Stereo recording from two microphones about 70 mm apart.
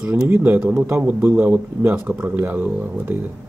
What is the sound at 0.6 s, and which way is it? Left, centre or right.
Speech, centre.